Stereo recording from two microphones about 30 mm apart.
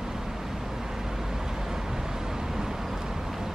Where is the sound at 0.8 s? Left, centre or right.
Centre.